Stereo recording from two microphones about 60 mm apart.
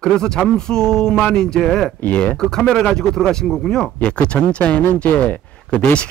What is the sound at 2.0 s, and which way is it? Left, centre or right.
Speech, left.